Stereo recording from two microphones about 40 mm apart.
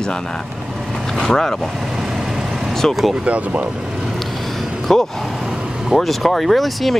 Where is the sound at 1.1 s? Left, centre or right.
Centre.